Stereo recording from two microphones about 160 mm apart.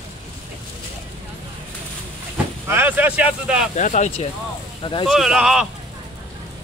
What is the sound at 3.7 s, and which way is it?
Speech, 50° left (ahead or behind).